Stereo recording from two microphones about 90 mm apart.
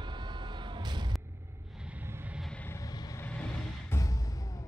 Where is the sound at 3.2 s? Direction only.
15° left (ahead or behind).